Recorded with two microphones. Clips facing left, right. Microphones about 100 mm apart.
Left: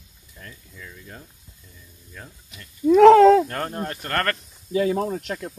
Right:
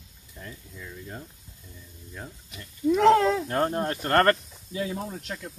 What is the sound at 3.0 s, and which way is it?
Speech, 90° left.